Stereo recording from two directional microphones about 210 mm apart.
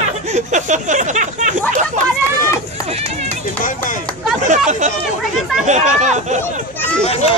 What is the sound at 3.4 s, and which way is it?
Speech, 40° left (ahead or behind).